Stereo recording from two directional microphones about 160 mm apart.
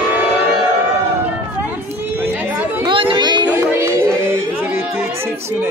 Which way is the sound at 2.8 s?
30° right (ahead or behind).